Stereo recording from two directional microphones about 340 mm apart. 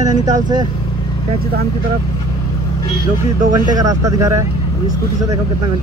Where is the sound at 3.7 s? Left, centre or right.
Centre.